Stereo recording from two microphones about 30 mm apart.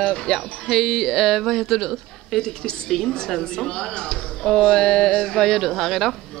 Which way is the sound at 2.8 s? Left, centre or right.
Centre.